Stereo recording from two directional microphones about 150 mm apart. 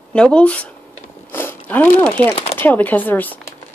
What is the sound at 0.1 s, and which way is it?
Speech, 5° left (ahead or behind).